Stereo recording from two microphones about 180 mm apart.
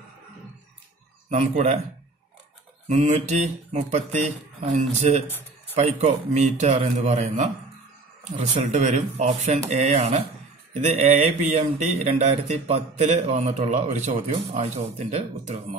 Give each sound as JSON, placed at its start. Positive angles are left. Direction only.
{"t": 1.3, "sound": "speech", "side_deg": -40}
{"t": 2.9, "sound": "speech", "side_deg": -40}